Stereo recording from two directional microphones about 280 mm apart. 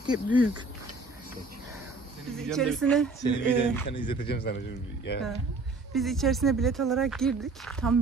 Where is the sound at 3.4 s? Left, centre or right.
Left.